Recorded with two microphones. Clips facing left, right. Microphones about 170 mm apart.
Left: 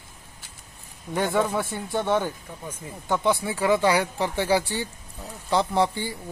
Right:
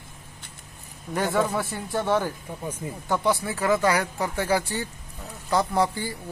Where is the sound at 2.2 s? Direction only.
5° right (ahead or behind).